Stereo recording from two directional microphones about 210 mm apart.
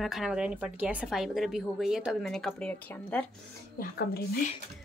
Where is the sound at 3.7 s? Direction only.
50° left (ahead or behind).